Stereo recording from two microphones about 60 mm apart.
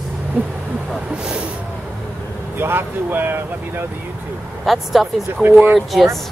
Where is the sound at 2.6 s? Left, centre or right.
Right.